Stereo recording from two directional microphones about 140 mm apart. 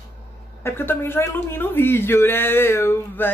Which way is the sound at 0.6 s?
15° left (ahead or behind).